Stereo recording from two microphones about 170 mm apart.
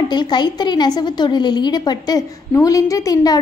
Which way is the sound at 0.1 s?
25° left (ahead or behind).